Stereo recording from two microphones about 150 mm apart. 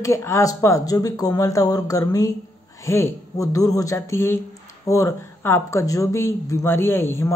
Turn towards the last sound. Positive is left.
turn(degrees=15)  # may be behind; listen again after turning